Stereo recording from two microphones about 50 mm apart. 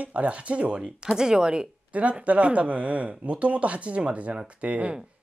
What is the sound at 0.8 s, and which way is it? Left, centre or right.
Speech, centre.